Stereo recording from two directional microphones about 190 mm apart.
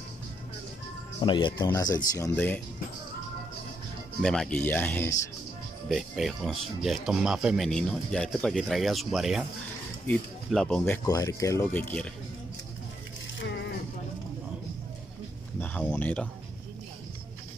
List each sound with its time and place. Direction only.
1.2 s speech: 25° left (ahead or behind); by 2.6 s 10° left (ahead or behind)
4.2 s speech: centre (ahead or behind)
5.9 s speech: centre (ahead or behind)
11.1 s speech: 15° left (ahead or behind)
15.6 s speech: 10° left (ahead or behind)